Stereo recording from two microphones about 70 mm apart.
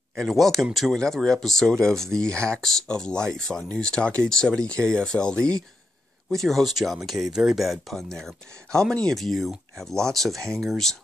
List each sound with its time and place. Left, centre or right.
0.1 s speech: centre
10.4 s speech: right
10.7 s speech: centre